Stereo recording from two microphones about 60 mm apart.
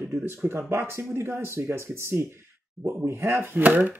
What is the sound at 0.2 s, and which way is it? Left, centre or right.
Speech, right.